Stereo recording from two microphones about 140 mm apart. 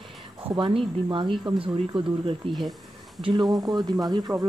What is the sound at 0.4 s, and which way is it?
Speech, 40° right (ahead or behind).